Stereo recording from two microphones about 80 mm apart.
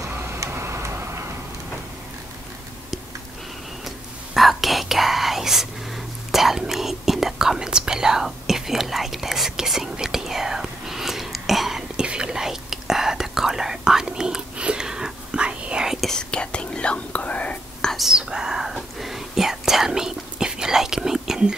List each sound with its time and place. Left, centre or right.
0.1 s tick-tock: right
3.8 s whispering: centre
16.1 s whispering: centre
17.9 s whispering: centre